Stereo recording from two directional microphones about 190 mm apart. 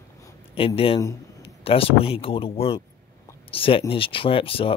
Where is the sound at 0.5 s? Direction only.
30° left (ahead or behind).